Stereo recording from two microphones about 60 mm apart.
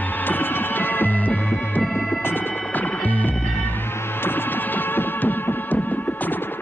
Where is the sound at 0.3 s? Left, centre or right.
Left.